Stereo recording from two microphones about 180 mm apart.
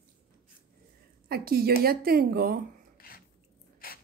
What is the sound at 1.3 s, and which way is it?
A woman's voice, 60° right (ahead or behind).